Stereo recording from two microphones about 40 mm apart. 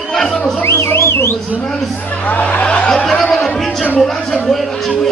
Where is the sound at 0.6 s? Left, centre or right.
Left.